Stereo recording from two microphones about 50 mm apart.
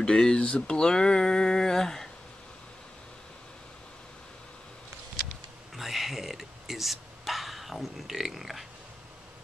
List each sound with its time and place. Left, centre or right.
0.0 s speech: centre
5.8 s speech: centre